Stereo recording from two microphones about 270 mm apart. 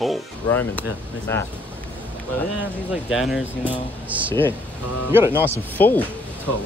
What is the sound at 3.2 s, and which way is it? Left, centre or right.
Speech, centre.